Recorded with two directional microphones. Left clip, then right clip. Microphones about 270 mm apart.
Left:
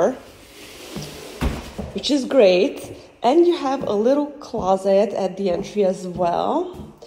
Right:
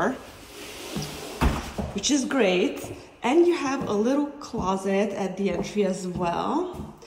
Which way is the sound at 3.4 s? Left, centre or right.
Centre.